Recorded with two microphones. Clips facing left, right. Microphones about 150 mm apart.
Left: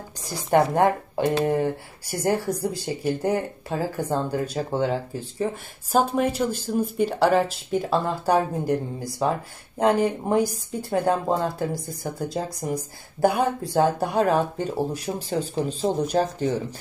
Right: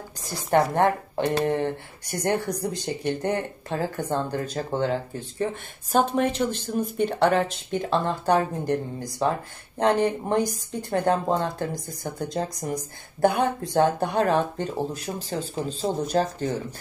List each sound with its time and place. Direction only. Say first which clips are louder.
0.3 s speech: left 2 dB; 10° left (ahead or behind)